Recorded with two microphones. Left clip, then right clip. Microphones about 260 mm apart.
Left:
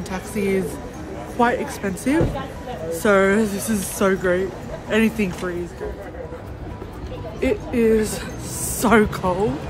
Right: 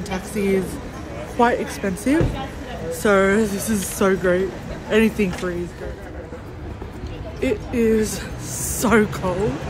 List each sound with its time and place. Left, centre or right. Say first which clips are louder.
0.1 s speech: right 1 dB; centre
7.3 s speech: left 1 dB; centre